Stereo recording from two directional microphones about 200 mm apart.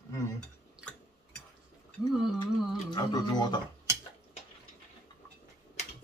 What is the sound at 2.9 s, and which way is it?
Speech, 20° left (ahead or behind).